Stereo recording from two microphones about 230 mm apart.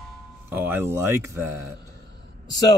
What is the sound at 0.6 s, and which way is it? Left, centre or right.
Speech, centre.